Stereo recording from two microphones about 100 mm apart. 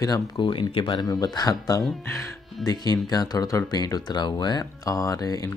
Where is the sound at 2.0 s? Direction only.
25° left (ahead or behind).